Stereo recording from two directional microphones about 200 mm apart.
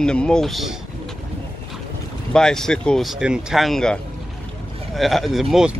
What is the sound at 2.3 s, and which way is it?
Speech, 5° left (ahead or behind).